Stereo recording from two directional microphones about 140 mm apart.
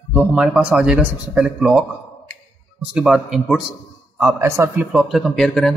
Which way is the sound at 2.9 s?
5° right (ahead or behind).